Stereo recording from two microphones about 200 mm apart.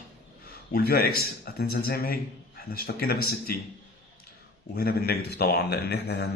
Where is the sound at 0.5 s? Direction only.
50° left (ahead or behind).